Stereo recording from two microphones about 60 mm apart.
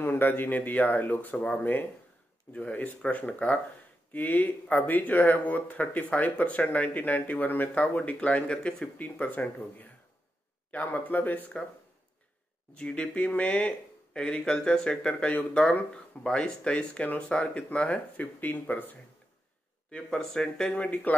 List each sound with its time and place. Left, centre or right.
0.0 s speech: left; by 8.9 s centre
8.9 s speech: left
12.7 s speech: centre
19.9 s speech: centre
20.7 s speech: left